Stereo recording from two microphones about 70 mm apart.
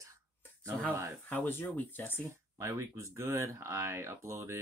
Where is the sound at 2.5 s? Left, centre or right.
Right.